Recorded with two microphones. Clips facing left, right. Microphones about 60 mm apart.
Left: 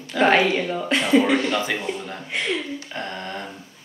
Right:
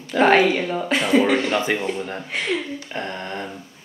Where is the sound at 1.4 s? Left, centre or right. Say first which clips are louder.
Right 2 dB; right.